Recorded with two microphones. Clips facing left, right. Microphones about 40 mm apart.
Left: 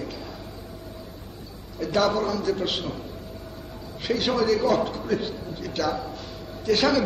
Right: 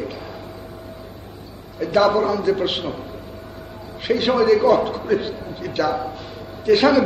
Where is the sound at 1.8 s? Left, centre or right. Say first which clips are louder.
Right 6 dB; right.